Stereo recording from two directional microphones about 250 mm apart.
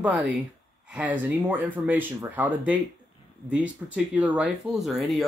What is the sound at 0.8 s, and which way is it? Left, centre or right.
Speech, centre.